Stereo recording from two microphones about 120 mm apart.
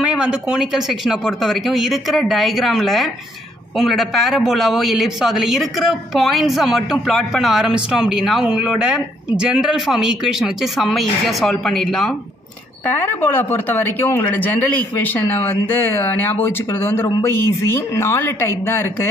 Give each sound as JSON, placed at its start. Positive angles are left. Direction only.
{"t": 0.0, "sound": "a man's voice", "side_deg": -10}
{"t": 12.8, "sound": "speech", "side_deg": 15}